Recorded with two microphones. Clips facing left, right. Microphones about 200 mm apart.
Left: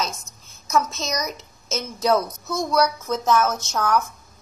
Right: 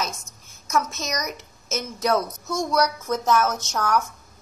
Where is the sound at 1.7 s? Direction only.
15° right (ahead or behind).